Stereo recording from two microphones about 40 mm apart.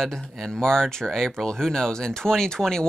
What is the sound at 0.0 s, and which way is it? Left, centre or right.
Speech, centre.